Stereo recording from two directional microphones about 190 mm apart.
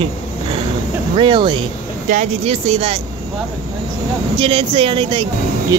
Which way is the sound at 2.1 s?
35° right (ahead or behind).